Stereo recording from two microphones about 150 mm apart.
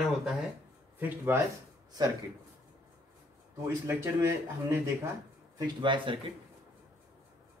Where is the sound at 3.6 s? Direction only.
20° right (ahead or behind).